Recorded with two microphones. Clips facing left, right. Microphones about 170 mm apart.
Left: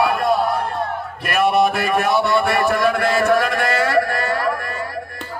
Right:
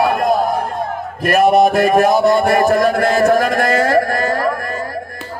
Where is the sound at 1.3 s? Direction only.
40° right (ahead or behind).